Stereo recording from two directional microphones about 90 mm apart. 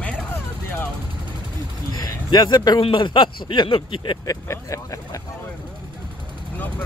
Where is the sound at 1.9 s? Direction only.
50° left (ahead or behind).